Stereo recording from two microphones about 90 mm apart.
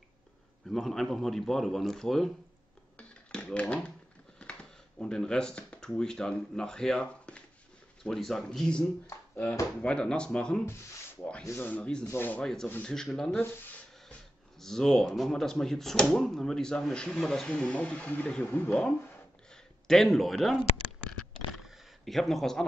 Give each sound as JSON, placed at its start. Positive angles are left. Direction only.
{"t": 0.7, "sound": "speech", "side_deg": 0}
{"t": 3.0, "sound": "typewriter", "side_deg": 15}
{"t": 4.4, "sound": "a sound", "side_deg": 10}
{"t": 5.9, "sound": "speech", "side_deg": 10}
{"t": 9.0, "sound": "a sound", "side_deg": 30}
{"t": 9.8, "sound": "speech", "side_deg": 10}
{"t": 11.4, "sound": "speech", "side_deg": 25}
{"t": 12.1, "sound": "rub", "side_deg": 25}
{"t": 12.4, "sound": "speech", "side_deg": 5}
{"t": 14.6, "sound": "speech", "side_deg": 5}
{"t": 21.6, "sound": "a sound", "side_deg": 0}